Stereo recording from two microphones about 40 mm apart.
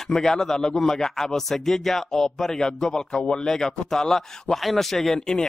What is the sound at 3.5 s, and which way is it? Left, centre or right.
Speech, centre.